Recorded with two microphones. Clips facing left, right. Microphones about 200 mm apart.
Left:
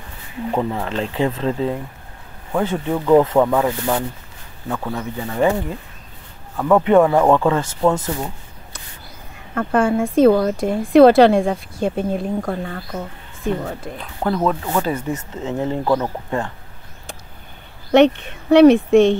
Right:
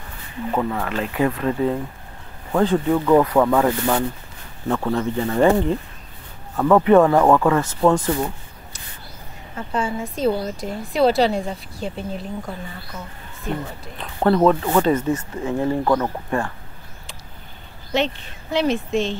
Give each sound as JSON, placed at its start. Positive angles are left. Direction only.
{"t": 0.6, "sound": "speech", "side_deg": 25}
{"t": 6.7, "sound": "speech", "side_deg": 15}
{"t": 7.8, "sound": "speech", "side_deg": 5}
{"t": 9.6, "sound": "speech", "side_deg": 55}
{"t": 13.9, "sound": "speech", "side_deg": 0}
{"t": 15.8, "sound": "speech", "side_deg": 10}
{"t": 16.3, "sound": "speech", "side_deg": 20}
{"t": 17.9, "sound": "speech", "side_deg": 65}